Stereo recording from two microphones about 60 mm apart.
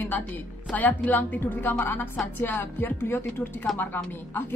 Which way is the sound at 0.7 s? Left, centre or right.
Left.